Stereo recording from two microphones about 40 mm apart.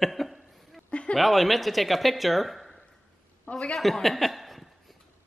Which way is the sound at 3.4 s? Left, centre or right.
Centre.